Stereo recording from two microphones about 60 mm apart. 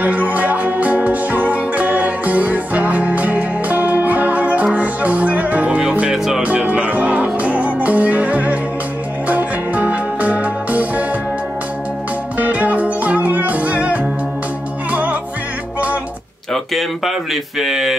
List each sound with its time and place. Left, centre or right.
0.0 s music: right
6.1 s music: centre
6.4 s music: centre
12.4 s music: right
16.7 s a sound: centre